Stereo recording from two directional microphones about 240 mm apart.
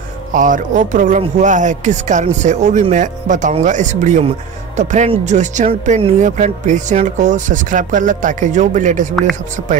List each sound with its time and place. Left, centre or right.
0.3 s speech: right